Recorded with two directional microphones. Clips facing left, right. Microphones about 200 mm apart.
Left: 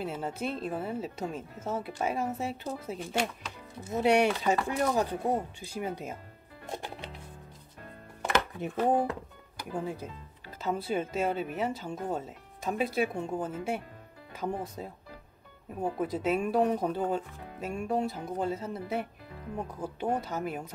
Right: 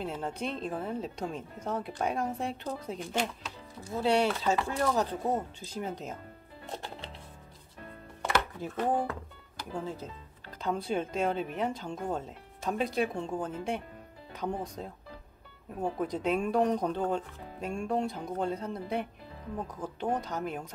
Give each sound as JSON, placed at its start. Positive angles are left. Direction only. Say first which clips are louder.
{"t": 0.0, "sound": "speech", "louder": "left 1 dB", "side_deg": 5}
{"t": 3.9, "sound": "speech", "louder": "left 2 dB", "side_deg": 15}
{"t": 6.6, "sound": "music", "louder": "left 2 dB", "side_deg": 10}
{"t": 8.3, "sound": "music", "louder": "left 1 dB", "side_deg": 20}
{"t": 9.7, "sound": "speech", "louder": "left 2 dB", "side_deg": 10}